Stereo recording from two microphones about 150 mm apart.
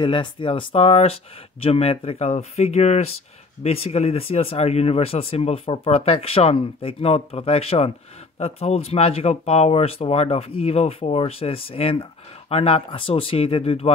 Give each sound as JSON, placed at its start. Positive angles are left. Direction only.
{"t": 0.0, "sound": "speech", "side_deg": 35}